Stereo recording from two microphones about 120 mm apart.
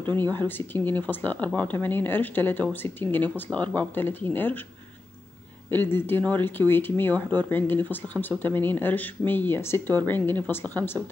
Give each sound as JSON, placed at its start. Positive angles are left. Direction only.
{"t": 0.2, "sound": "speech", "side_deg": 15}
{"t": 5.7, "sound": "speech", "side_deg": 15}